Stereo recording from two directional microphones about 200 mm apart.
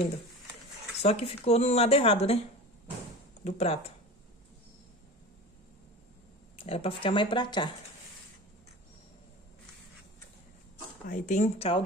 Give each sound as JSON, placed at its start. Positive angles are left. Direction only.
{"t": 1.0, "sound": "speech", "side_deg": 30}
{"t": 3.4, "sound": "speech", "side_deg": 30}
{"t": 6.6, "sound": "speech", "side_deg": 30}
{"t": 11.1, "sound": "speech", "side_deg": 40}